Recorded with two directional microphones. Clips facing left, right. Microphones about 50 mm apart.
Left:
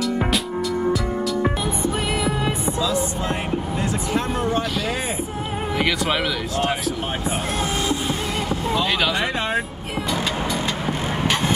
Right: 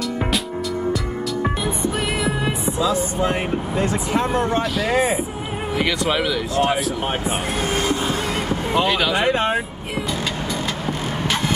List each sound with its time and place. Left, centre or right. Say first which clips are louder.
1.4 s music: even; centre
2.8 s speech: right 5 dB; right
5.8 s speech: right 1 dB; centre
7.2 s speech: right 1 dB; right
8.9 s speech: right 1 dB; centre
9.2 s speech: right 4 dB; right